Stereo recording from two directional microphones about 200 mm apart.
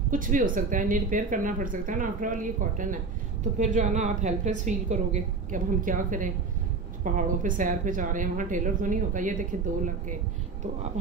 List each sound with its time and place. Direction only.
0.1 s a woman's voice: 40° right (ahead or behind)